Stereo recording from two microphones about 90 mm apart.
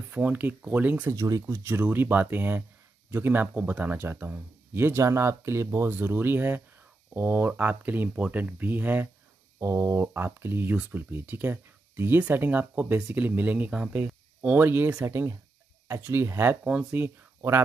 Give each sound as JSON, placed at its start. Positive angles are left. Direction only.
{"t": 0.1, "sound": "speech", "side_deg": -20}
{"t": 1.1, "sound": "speech", "side_deg": -40}
{"t": 9.6, "sound": "speech", "side_deg": -30}
{"t": 15.0, "sound": "speech", "side_deg": -30}